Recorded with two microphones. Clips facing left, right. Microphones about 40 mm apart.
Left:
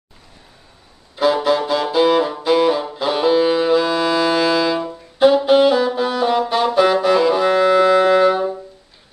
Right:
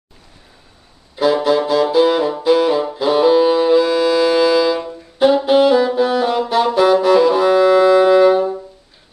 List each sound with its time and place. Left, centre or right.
1.1 s saxophone: centre
7.4 s music: centre
8.0 s saxophone: centre